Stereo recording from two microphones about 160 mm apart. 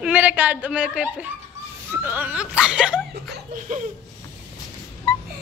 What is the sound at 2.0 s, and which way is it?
Speech, 10° right (ahead or behind).